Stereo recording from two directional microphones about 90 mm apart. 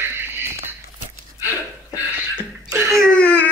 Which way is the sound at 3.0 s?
15° left (ahead or behind).